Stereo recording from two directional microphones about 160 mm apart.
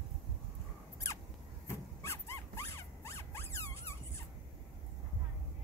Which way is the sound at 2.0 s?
15° left (ahead or behind).